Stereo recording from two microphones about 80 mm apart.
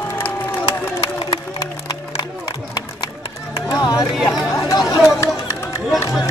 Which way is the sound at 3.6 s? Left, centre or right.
Left.